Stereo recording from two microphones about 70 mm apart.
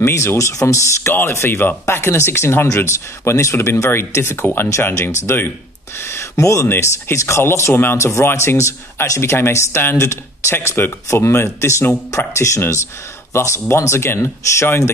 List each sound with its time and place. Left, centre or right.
0.0 s speech: left
1.1 s speech: left